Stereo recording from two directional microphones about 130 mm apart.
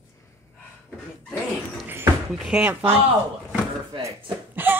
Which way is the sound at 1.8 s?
20° right (ahead or behind).